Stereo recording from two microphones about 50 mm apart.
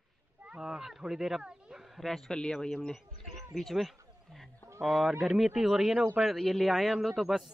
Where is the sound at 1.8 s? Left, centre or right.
Centre.